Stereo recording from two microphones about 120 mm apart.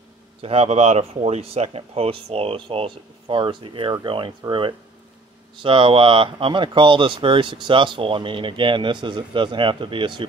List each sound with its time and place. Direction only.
0.4 s speech: 55° right (ahead or behind)